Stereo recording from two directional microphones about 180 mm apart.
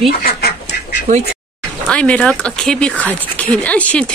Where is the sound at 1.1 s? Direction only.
45° right (ahead or behind).